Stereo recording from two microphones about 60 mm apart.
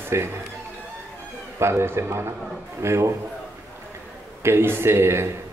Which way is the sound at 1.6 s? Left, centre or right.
Right.